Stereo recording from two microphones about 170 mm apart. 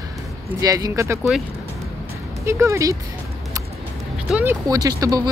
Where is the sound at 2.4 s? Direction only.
15° right (ahead or behind).